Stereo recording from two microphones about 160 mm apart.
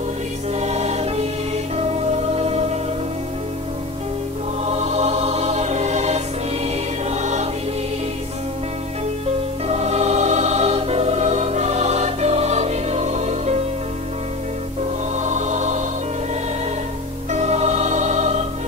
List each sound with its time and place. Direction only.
0.6 s music: 40° right (ahead or behind)
2.3 s music: 40° right (ahead or behind)
4.6 s music: 40° right (ahead or behind)
9.7 s music: 40° right (ahead or behind)
15.1 s music: 45° right (ahead or behind)
17.3 s music: 45° right (ahead or behind)